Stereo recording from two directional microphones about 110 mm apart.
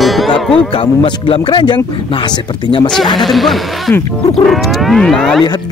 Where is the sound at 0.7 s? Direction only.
50° left (ahead or behind).